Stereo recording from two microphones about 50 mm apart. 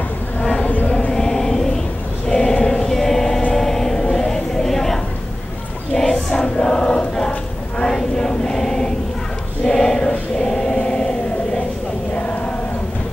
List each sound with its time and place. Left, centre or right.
0.4 s a sound: centre
0.8 s chant: centre
1.1 s choir: centre
3.5 s music: centre
5.9 s choir: centre